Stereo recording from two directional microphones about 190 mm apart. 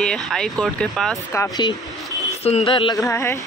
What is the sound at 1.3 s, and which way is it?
Speech, 20° left (ahead or behind).